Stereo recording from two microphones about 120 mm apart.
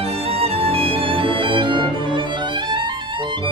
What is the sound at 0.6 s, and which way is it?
Music, 50° right (ahead or behind).